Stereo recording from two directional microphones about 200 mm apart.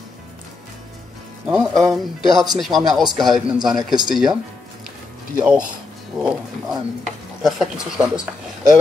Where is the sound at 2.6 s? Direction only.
Centre (ahead or behind).